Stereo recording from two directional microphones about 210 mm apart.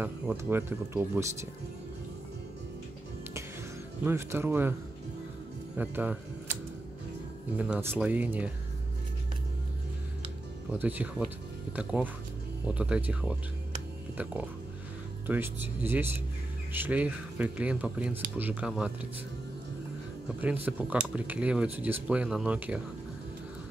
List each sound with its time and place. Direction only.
0.0 s speech: 10° right (ahead or behind)
4.0 s speech: 10° right (ahead or behind)
5.8 s speech: 10° right (ahead or behind)
7.5 s speech: 5° right (ahead or behind)
10.7 s speech: 10° right (ahead or behind)
20.3 s speech: 10° right (ahead or behind)